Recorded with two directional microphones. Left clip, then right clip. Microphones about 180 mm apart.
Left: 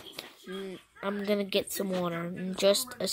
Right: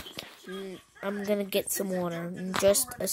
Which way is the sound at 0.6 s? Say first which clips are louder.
Even; 5° right (ahead or behind).